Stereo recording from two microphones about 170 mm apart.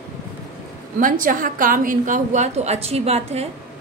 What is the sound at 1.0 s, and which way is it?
A woman's voice, 50° right (ahead or behind).